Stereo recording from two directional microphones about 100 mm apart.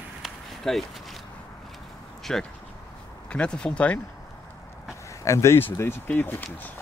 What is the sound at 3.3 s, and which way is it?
Speech, 10° left (ahead or behind).